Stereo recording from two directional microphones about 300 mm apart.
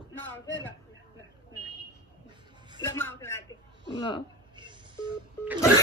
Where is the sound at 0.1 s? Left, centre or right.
Centre.